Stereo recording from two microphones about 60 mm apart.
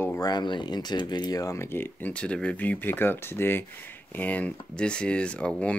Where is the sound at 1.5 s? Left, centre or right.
Left.